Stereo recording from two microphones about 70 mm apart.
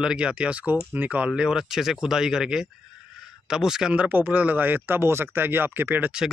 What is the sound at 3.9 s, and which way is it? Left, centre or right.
Speech, right.